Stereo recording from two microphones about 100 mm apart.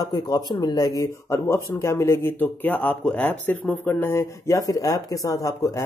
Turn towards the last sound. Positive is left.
turn(degrees=35)  # may be behind; listen again after turning